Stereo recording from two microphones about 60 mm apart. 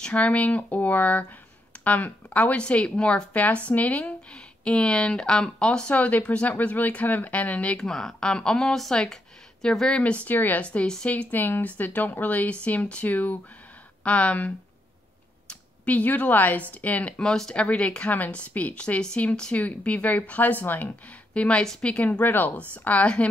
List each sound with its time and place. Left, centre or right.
0.0 s a woman's voice: left
5.9 s a woman's voice: left
7.8 s speech: centre
10.2 s a woman's voice: left
10.6 s a woman's voice: left
15.8 s a woman's voice: left
17.2 s a woman's voice: centre
22.2 s a woman's voice: left